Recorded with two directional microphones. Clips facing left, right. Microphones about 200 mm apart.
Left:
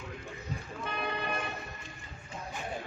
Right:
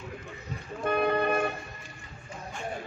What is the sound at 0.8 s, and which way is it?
Vehicle, 50° right (ahead or behind).